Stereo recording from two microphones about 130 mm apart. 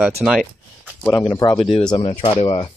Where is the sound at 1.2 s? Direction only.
30° left (ahead or behind).